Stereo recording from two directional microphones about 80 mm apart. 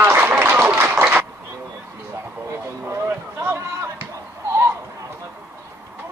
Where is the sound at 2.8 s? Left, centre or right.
Right.